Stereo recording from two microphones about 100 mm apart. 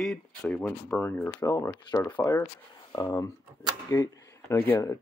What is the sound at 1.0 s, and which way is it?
Speech, 20° left (ahead or behind).